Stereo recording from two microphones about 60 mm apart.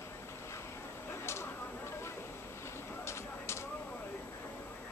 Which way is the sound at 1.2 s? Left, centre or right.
Left.